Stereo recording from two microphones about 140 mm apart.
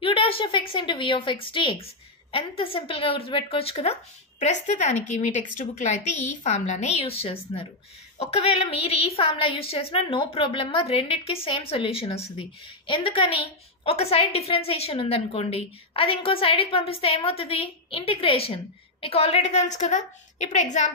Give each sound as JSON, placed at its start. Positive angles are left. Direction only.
{"t": 0.0, "sound": "a woman's voice", "side_deg": 40}